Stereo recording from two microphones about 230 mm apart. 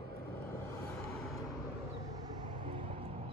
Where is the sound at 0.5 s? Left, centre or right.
Centre.